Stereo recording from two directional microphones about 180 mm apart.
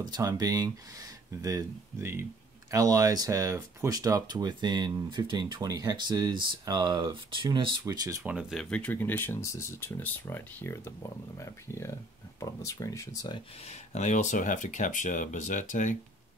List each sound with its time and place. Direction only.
0.0 s speech: 20° right (ahead or behind)
8.2 s speech: 5° right (ahead or behind); by 13.4 s 20° left (ahead or behind)
13.7 s speech: 40° left (ahead or behind)